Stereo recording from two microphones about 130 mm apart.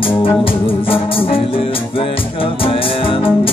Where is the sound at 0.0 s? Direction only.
45° left (ahead or behind).